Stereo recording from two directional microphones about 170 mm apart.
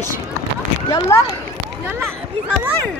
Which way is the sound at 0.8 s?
20° left (ahead or behind).